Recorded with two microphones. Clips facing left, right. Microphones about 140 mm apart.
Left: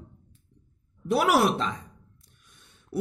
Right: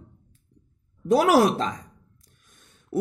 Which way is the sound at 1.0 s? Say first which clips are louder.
Right 4 dB; 40° right (ahead or behind).